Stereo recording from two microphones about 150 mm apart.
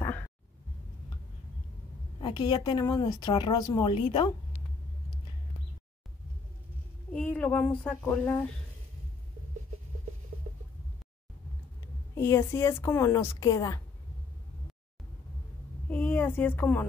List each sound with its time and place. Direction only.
2.1 s a woman's voice: 35° left (ahead or behind)
7.1 s speech: 10° left (ahead or behind)
12.2 s a woman's voice: 15° left (ahead or behind)
15.9 s a sound: 15° left (ahead or behind)